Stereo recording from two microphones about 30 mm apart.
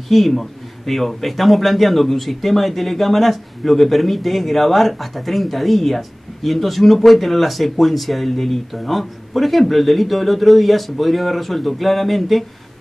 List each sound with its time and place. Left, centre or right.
0.1 s speech: centre